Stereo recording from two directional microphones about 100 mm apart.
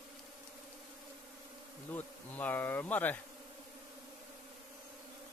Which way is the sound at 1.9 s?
15° left (ahead or behind).